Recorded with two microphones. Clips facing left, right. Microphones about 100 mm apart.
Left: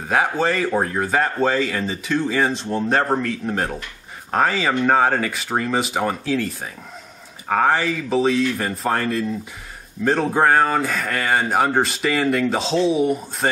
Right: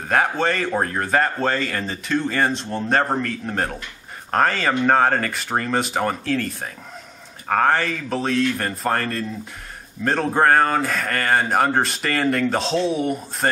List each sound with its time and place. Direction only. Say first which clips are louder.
0.1 s speech: left 1 dB; centre (ahead or behind)